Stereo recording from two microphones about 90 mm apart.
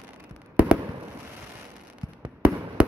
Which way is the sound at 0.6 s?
20° right (ahead or behind).